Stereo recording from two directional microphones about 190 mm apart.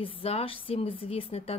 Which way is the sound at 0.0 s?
30° left (ahead or behind).